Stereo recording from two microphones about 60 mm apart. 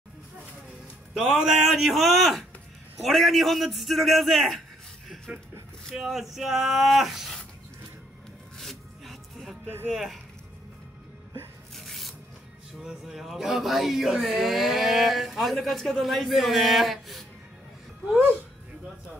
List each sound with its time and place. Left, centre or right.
1.1 s speech: centre
5.3 s speech: centre
8.5 s music: centre
9.9 s speech: centre
11.7 s rub: centre
12.8 s speech: centre